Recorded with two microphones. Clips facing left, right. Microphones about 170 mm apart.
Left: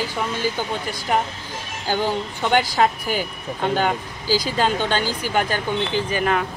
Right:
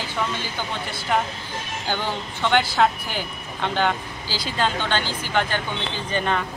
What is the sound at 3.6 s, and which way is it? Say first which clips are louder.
Speech: left 2 dB; 45° left (ahead or behind).